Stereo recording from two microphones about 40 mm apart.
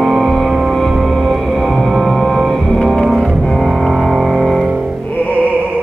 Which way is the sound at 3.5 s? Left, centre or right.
Centre.